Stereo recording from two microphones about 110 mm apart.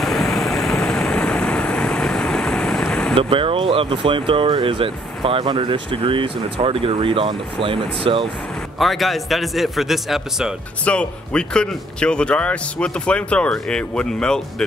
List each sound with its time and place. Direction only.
0.0 s vehicle: centre (ahead or behind)
3.2 s speech: 55° right (ahead or behind)
8.7 s a man's voice: centre (ahead or behind)
10.9 s a man's voice: 10° left (ahead or behind)